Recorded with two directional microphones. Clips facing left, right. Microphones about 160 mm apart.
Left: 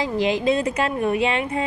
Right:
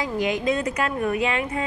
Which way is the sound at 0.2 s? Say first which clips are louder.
Left 3 dB; 30° left (ahead or behind).